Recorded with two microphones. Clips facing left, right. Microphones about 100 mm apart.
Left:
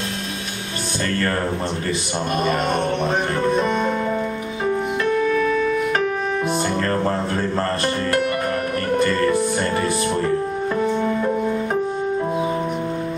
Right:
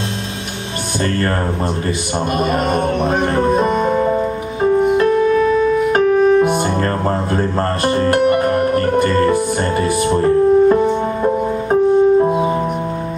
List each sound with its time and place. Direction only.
2.7 s music: 5° right (ahead or behind)
3.3 s music: 40° right (ahead or behind)
6.5 s music: 30° right (ahead or behind)